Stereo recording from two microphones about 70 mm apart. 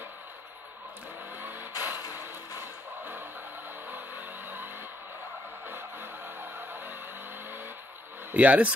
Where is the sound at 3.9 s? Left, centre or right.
Right.